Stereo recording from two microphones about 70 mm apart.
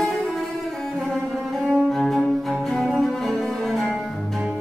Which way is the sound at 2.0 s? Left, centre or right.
Centre.